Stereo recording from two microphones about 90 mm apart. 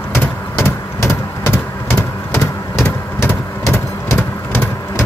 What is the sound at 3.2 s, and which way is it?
Vehicle, 30° left (ahead or behind).